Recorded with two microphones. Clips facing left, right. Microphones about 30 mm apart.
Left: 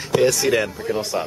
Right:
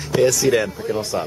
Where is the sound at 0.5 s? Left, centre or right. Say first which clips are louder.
Right 1 dB; centre.